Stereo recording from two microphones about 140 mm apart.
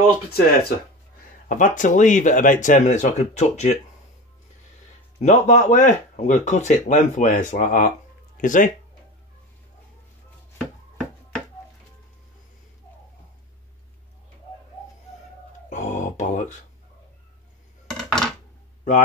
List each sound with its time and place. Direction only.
0.3 s speech: 90° left
1.5 s speech: 65° left (ahead or behind)
5.2 s speech: 60° left (ahead or behind)
10.6 s chopping: centre (ahead or behind)
15.7 s a sound: 60° left (ahead or behind)
17.8 s dishes: 5° left (ahead or behind)